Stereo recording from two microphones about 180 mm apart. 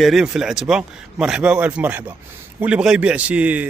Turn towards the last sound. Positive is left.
turn(degrees=-5)  # may be behind; listen again after turning